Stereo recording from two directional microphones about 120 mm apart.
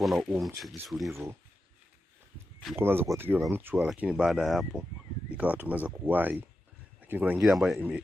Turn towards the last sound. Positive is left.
turn(degrees=0)  # may be behind; listen again after turning